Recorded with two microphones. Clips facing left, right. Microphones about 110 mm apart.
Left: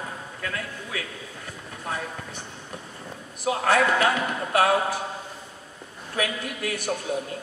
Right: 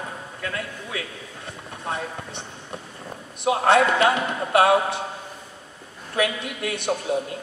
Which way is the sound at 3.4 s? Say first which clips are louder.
Right 3 dB; 25° right (ahead or behind).